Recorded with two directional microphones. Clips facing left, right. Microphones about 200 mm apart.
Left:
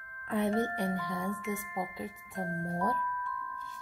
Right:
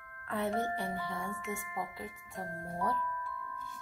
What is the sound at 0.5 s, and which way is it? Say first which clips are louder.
Speech: left 3 dB; 15° left (ahead or behind).